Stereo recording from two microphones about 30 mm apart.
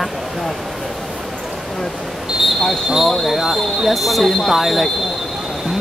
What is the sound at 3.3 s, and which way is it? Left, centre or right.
Speech, centre.